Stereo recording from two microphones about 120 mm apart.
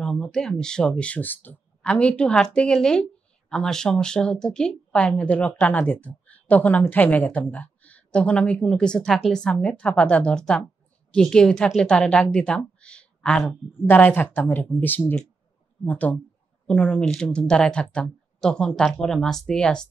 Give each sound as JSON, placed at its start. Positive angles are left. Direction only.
{"t": 0.0, "sound": "speech", "side_deg": 5}
{"t": 13.8, "sound": "speech", "side_deg": 15}